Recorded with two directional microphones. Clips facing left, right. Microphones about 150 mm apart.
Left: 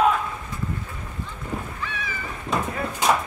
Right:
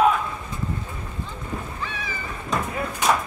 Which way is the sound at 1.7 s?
30° right (ahead or behind).